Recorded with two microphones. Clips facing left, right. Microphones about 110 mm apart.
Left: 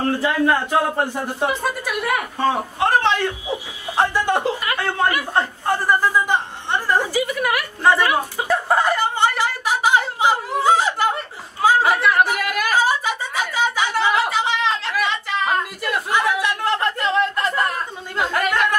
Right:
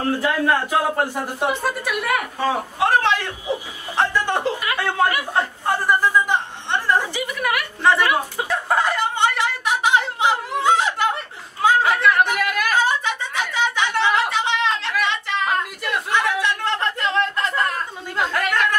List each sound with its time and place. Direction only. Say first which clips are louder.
0.2 s speech: left 1 dB; 5° right (ahead or behind)
3.9 s speech: left 2 dB; 15° left (ahead or behind)
4.8 s a sound: right 1 dB; 5° right (ahead or behind)
7.4 s chuckle: right 1 dB; 5° left (ahead or behind)